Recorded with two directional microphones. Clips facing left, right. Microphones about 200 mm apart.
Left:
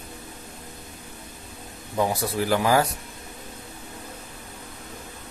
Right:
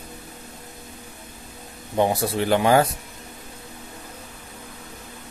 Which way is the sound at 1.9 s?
25° right (ahead or behind).